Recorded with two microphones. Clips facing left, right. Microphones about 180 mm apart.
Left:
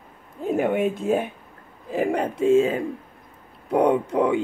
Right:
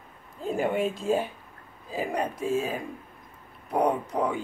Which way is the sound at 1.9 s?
70° left (ahead or behind).